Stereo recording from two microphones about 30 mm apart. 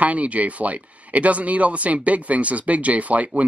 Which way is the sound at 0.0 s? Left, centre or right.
Right.